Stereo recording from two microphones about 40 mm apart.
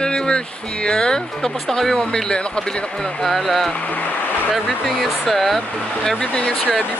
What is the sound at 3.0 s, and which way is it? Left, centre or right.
Speech, centre.